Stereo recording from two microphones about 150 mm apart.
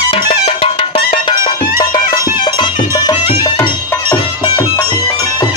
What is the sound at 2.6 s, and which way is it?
Music, 30° left (ahead or behind).